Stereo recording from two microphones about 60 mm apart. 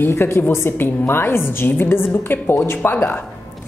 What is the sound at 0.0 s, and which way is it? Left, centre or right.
A woman's voice, left.